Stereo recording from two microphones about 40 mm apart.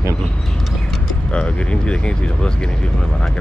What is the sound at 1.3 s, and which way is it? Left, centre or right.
Speech, left.